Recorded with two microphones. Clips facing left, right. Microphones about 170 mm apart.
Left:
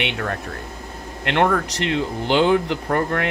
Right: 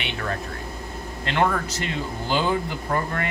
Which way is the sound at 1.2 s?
70° left (ahead or behind).